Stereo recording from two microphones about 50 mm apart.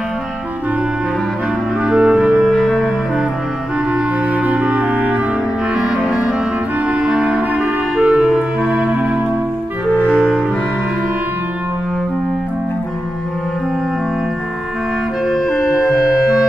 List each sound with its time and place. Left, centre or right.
1.8 s clarinet: centre
2.5 s music: centre
3.9 s music: right
5.8 s music: centre
7.0 s clarinet: centre
8.0 s music: right
15.2 s clarinet: centre